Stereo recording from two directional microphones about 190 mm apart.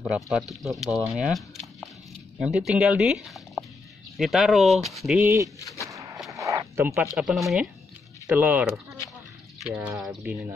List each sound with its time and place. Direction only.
0.0 s speech: centre (ahead or behind)
2.4 s speech: 5° right (ahead or behind)
6.3 s a sound: 15° right (ahead or behind)
7.2 s speech: centre (ahead or behind)